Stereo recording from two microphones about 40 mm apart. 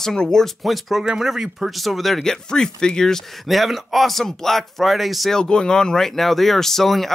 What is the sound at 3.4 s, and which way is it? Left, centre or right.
Speech, centre.